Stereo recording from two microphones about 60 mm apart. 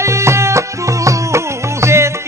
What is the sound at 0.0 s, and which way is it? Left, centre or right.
Music, right.